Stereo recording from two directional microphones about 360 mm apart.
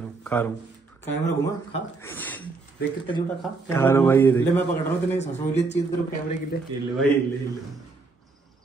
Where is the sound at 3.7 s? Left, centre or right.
Centre.